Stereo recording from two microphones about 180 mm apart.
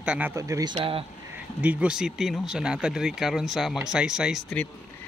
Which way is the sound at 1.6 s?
5° right (ahead or behind).